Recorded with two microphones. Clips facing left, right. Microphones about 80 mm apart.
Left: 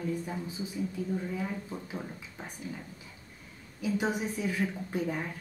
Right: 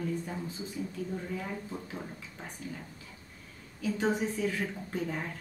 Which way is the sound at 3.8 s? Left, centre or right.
Centre.